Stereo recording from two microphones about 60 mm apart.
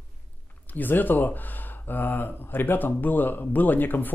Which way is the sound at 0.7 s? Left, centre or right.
Left.